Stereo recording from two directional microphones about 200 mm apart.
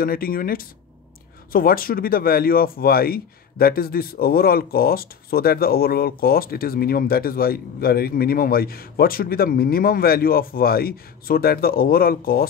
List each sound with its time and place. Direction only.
0.0 s speech: 45° left (ahead or behind)